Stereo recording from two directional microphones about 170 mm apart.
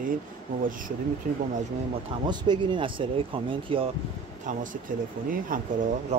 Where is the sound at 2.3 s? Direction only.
25° right (ahead or behind).